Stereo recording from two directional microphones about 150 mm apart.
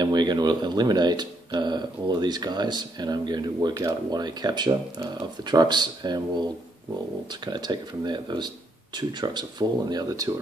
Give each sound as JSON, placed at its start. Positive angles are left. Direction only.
{"t": 0.0, "sound": "speech", "side_deg": -30}